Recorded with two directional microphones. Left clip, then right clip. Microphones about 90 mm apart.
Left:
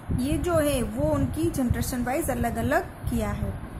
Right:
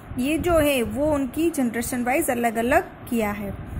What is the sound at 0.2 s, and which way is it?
A woman's voice, 35° right (ahead or behind).